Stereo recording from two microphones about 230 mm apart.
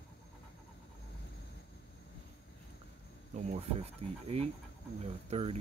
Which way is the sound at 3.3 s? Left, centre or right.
Right.